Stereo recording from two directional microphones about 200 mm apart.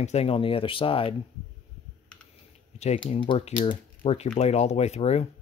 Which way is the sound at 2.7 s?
35° left (ahead or behind).